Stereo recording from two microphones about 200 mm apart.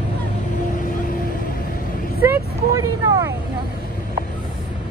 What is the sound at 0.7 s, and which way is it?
Vehicle, 40° left (ahead or behind).